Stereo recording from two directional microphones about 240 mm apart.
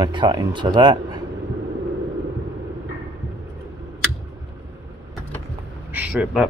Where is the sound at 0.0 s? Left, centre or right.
Centre.